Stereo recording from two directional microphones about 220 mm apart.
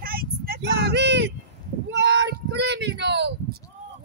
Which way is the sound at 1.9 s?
55° right (ahead or behind).